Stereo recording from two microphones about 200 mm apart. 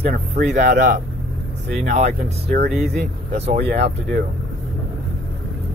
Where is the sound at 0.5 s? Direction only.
40° right (ahead or behind).